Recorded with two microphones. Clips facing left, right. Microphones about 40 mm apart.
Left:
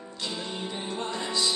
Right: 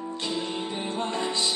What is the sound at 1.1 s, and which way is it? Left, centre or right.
Music, right.